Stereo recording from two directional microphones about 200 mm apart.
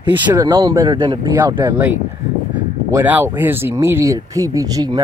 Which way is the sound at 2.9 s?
10° right (ahead or behind).